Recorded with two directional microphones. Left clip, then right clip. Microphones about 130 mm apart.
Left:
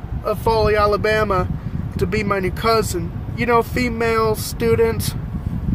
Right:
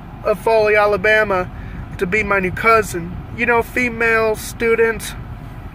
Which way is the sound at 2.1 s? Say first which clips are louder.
Right 5 dB; 10° left (ahead or behind).